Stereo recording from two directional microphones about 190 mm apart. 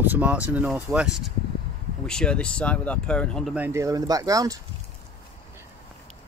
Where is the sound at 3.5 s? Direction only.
10° right (ahead or behind).